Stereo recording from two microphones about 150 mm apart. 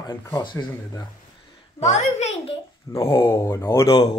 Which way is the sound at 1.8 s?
50° left (ahead or behind).